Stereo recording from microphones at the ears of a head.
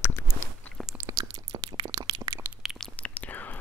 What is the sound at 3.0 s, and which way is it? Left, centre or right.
Whispering, left.